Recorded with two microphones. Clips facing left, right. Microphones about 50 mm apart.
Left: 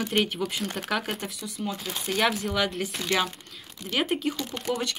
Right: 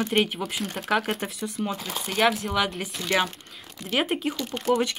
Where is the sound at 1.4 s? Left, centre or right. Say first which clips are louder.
Right 4 dB; right.